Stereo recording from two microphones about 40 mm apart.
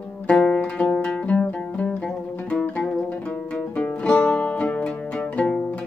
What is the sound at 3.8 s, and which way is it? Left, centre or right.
Music, left.